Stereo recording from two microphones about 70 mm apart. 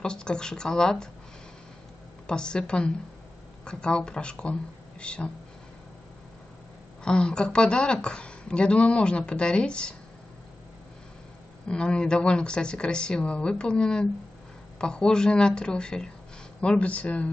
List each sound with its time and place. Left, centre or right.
0.0 s speech: centre
2.2 s speech: centre
7.1 s speech: centre
11.6 s speech: centre